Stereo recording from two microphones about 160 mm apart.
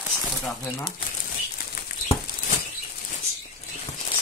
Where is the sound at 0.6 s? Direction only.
25° left (ahead or behind).